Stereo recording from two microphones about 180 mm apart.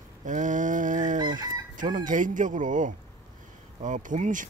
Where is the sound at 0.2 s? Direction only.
45° right (ahead or behind).